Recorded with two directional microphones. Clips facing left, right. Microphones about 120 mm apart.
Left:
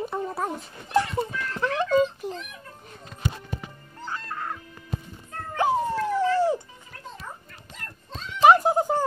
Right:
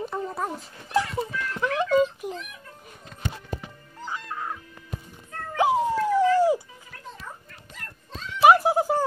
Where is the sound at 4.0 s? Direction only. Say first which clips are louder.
Even; 10° right (ahead or behind).